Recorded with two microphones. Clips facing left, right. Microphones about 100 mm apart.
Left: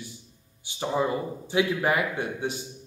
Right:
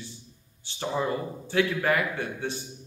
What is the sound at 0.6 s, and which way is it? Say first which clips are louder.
A man's voice: left 2 dB; 15° left (ahead or behind).